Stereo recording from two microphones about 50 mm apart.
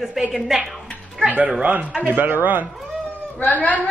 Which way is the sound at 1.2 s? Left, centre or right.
Right.